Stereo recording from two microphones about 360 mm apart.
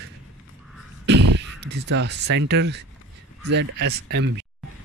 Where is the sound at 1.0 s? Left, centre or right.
Right.